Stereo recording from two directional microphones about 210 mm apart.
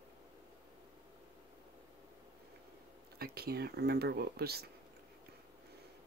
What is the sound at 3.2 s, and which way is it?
Speech, 45° right (ahead or behind).